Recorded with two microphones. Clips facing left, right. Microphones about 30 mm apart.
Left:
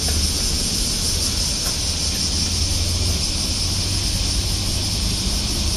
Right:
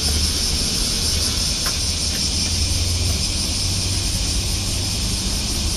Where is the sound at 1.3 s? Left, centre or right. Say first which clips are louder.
Right 1 dB; right.